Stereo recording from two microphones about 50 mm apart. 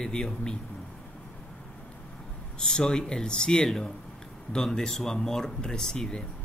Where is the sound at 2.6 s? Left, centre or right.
Centre.